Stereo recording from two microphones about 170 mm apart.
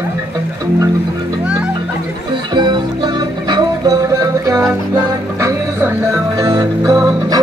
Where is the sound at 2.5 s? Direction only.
25° right (ahead or behind).